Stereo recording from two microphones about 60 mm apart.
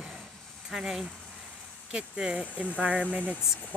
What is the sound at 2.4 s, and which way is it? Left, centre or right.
Speech, right.